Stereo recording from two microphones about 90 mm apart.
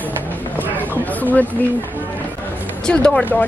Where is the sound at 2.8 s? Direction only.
10° left (ahead or behind).